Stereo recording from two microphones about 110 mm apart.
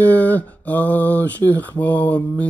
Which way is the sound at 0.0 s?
15° left (ahead or behind).